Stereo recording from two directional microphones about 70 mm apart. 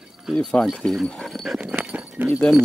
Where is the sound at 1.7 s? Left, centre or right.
Centre.